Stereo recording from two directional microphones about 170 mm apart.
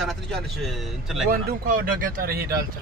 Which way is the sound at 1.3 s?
55° right (ahead or behind).